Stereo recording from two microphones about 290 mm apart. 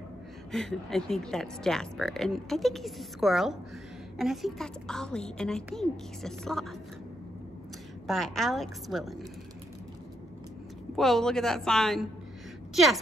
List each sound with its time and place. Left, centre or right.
0.5 s speech: centre
8.1 s speech: centre
11.0 s speech: centre